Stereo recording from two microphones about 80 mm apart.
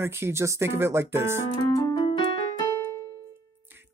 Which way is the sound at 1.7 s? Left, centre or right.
Left.